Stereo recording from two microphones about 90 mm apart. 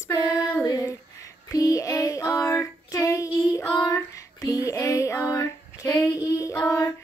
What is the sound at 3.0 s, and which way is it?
Female singing, 35° left (ahead or behind).